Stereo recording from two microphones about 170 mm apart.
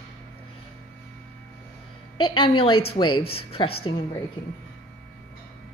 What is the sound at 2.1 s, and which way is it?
A woman's voice, 30° left (ahead or behind).